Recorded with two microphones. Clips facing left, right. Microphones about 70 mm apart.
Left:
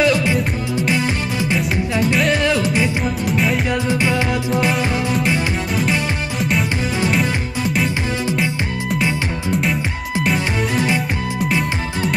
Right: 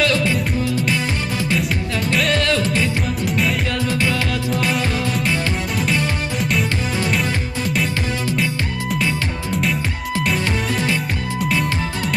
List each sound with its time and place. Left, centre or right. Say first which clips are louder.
0.0 s music: left 2 dB; centre
2.3 s music: left 2 dB; centre
3.3 s music: left 2 dB; centre
3.7 s music: left 2 dB; left
9.5 s music: left 2 dB; centre